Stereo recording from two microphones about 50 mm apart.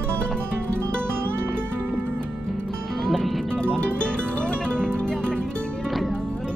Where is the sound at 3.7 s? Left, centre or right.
Left.